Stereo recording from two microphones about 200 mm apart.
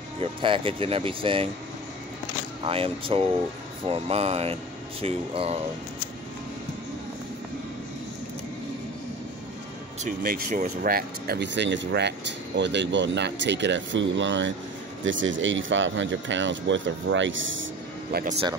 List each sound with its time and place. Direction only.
0.2 s speech: 25° right (ahead or behind)
2.6 s speech: 25° right (ahead or behind)
10.0 s speech: 45° right (ahead or behind); by 17.6 s 70° right (ahead or behind)
18.1 s speech: 50° right (ahead or behind)